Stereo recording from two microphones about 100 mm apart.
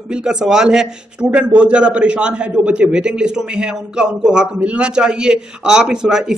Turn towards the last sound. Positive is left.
turn(degrees=-5)  # may be behind; listen again after turning